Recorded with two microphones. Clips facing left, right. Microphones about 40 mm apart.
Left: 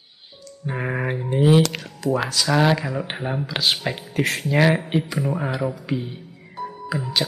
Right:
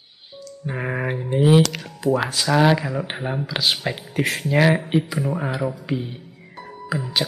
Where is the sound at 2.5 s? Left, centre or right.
Centre.